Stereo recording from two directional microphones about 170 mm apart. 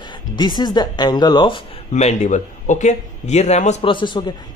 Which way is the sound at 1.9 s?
40° left (ahead or behind).